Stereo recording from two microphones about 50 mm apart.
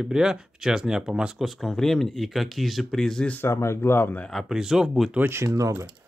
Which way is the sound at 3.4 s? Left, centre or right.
Left.